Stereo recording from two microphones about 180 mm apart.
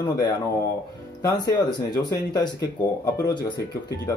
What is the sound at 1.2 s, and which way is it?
Speech, 20° left (ahead or behind).